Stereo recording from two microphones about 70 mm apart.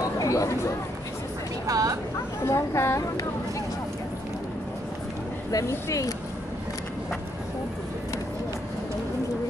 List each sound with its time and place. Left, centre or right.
0.2 s speech: left
1.7 s speech: right
2.4 s a woman's voice: left
5.7 s speech: left